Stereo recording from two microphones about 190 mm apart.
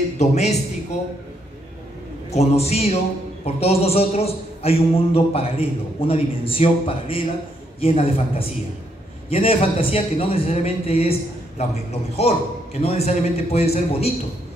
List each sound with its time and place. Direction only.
0.2 s a man's voice: 35° left (ahead or behind)
2.3 s a man's voice: 35° left (ahead or behind)